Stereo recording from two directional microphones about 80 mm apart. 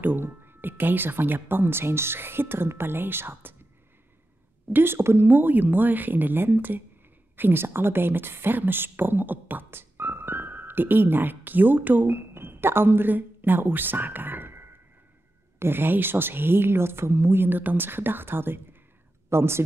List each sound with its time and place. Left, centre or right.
0.0 s speech: right
4.6 s a woman's voice: right